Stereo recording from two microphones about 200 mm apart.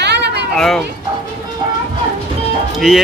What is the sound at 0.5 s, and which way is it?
Speech, 5° left (ahead or behind).